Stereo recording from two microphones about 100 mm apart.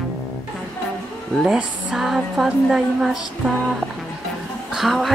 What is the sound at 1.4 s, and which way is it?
Speech, 5° right (ahead or behind).